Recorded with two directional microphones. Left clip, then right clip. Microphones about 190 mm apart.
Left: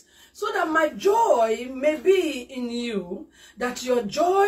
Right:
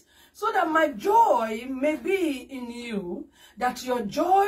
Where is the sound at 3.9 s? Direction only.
Centre (ahead or behind).